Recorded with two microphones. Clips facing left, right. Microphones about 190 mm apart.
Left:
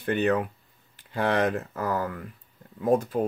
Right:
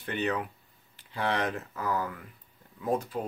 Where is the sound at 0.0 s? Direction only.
50° left (ahead or behind).